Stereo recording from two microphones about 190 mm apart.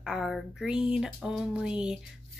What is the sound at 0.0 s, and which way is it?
Speech, centre (ahead or behind).